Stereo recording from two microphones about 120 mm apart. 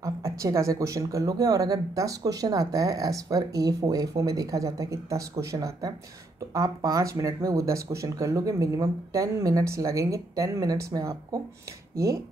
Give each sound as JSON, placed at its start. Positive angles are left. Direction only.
{"t": 0.0, "sound": "speech", "side_deg": -25}